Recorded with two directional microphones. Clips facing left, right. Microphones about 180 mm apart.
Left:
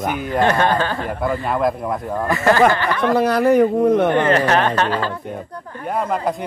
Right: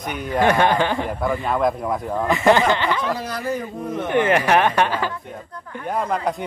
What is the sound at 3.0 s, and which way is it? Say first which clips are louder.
Speech: left 9 dB; 60° left (ahead or behind).